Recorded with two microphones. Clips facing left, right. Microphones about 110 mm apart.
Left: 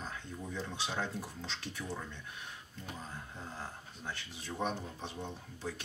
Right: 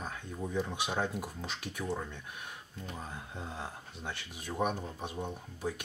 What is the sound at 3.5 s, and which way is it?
Speech, 70° right (ahead or behind).